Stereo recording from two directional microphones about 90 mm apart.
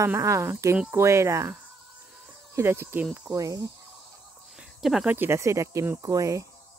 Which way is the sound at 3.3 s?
40° right (ahead or behind).